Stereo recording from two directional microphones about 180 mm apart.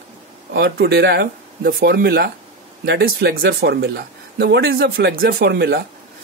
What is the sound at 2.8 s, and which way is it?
Speech, 70° right (ahead or behind).